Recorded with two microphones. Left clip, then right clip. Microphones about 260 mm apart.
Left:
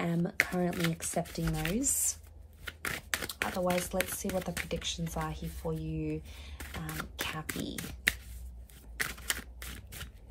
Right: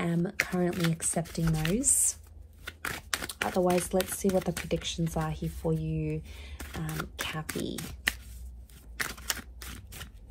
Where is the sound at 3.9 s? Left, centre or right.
Right.